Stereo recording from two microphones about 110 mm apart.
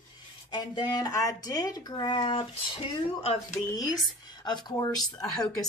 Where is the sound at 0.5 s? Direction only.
40° left (ahead or behind).